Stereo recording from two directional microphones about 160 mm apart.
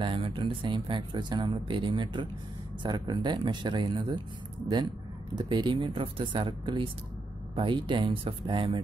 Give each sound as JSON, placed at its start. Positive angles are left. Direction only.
{"t": 0.0, "sound": "speech", "side_deg": -30}
{"t": 5.3, "sound": "speech", "side_deg": -25}